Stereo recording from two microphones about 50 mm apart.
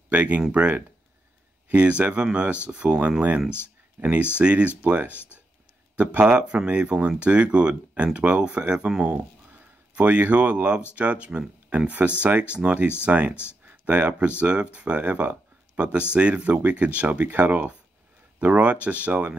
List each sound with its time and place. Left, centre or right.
0.1 s speech: right
5.1 s speech: left
6.2 s speech: centre
9.0 s speech: right
17.3 s speech: right